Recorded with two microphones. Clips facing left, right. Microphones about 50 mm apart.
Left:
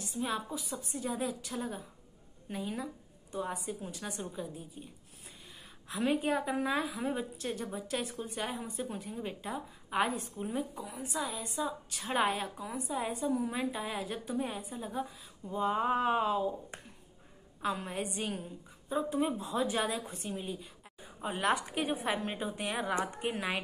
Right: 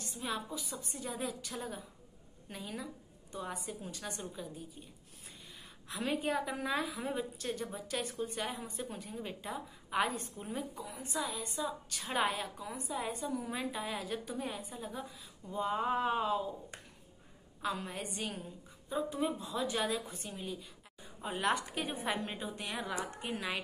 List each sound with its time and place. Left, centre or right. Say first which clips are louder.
0.0 s a sound: left 4 dB; centre
0.9 s a woman's voice: left 4 dB; centre
5.9 s a woman's voice: left 4 dB; centre
17.6 s a woman's voice: left 3 dB; centre
19.0 s a woman's voice: left 3 dB; left
21.0 s a woman's voice: left 2 dB; centre
22.4 s a woman's voice: left 5 dB; left